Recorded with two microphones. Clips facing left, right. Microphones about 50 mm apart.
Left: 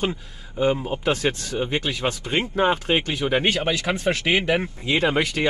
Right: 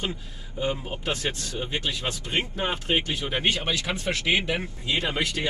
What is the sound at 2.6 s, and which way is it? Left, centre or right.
Speech, left.